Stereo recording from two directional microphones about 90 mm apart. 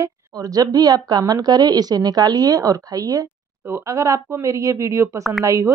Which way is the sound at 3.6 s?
30° right (ahead or behind).